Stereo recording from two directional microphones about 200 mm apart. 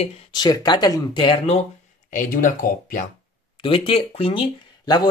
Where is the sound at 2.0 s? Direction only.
45° left (ahead or behind).